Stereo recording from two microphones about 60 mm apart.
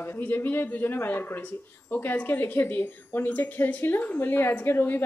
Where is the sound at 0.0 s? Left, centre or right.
Left.